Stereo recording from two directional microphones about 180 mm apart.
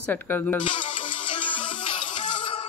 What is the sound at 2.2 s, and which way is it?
Music, 40° left (ahead or behind).